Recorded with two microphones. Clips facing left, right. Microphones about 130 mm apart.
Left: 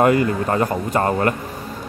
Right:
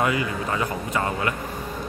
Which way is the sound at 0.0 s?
50° left (ahead or behind).